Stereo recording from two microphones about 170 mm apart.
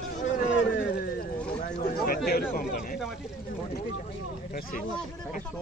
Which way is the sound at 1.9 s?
60° left (ahead or behind).